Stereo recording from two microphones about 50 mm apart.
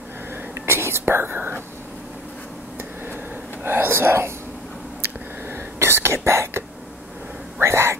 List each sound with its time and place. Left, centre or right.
0.7 s whispering: right
3.6 s speech: right
5.0 s whispering: right
7.6 s a sound: right